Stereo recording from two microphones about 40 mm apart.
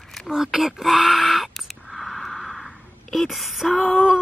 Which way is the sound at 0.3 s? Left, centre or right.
Centre.